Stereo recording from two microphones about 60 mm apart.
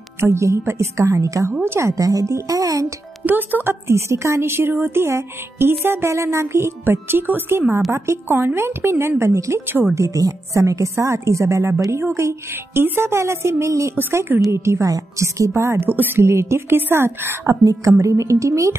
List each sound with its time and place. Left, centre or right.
0.2 s speech: right
1.5 s speech: right
3.3 s speech: right
9.9 s speech: right
14.9 s speech: right
15.9 s a woman's voice: right
16.3 s speech: right
18.0 s speech: right